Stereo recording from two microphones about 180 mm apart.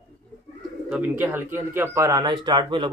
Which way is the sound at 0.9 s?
10° right (ahead or behind).